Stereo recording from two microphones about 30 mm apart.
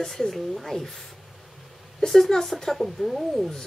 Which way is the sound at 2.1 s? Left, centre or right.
Centre.